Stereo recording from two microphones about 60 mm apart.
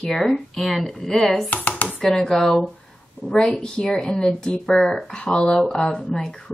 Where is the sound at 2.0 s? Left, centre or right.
Centre.